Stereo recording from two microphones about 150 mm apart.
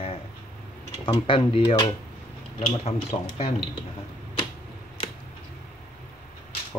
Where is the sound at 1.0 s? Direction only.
35° left (ahead or behind).